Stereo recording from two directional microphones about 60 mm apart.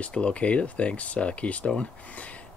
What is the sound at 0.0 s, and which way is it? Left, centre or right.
Speech, left.